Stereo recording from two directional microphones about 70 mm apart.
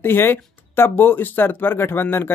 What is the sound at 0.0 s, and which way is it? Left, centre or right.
Speech, left.